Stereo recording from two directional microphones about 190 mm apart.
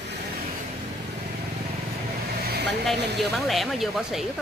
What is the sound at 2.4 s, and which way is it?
Vehicle, 55° right (ahead or behind).